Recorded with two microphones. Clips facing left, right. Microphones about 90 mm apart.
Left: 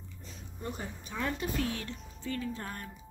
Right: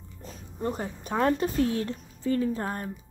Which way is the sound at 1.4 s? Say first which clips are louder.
Right 8 dB; 30° right (ahead or behind).